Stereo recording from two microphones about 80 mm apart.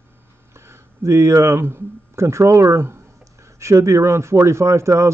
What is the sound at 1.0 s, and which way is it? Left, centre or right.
A man's voice, right.